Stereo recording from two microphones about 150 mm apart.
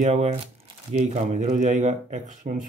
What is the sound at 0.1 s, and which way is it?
Speech, 50° right (ahead or behind).